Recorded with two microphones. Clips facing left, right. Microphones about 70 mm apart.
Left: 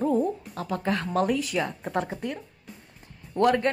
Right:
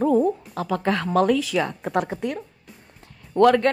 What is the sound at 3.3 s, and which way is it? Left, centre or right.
Speech, right.